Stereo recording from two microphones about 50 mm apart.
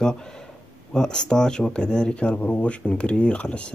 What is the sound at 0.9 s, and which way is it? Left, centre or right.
Speech, centre.